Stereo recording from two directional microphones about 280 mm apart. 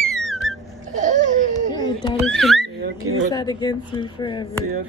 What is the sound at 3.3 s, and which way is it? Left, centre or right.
Speech, centre.